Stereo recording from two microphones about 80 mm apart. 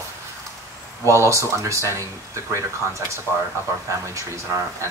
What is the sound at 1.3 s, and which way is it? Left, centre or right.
Speech, right.